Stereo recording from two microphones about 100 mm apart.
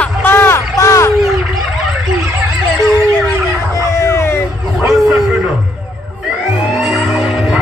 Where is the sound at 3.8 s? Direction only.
30° left (ahead or behind).